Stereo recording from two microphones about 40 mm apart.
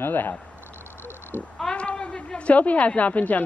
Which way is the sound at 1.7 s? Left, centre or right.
Left.